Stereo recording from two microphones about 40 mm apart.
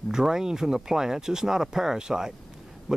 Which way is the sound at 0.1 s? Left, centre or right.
Centre.